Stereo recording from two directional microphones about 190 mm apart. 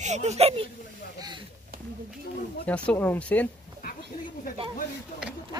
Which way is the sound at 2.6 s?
5° left (ahead or behind).